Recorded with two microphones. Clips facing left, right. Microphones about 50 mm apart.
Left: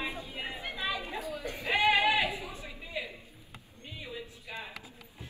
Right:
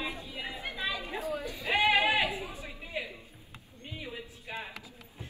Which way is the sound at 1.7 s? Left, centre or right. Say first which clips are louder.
Even; right.